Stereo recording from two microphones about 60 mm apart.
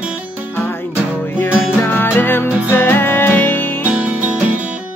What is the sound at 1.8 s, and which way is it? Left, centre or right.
Music, left.